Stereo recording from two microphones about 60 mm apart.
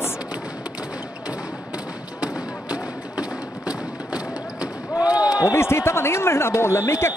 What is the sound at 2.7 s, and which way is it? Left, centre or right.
Thump, centre.